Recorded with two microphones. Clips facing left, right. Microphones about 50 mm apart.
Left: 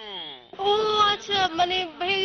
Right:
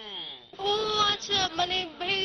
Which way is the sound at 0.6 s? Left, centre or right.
Left.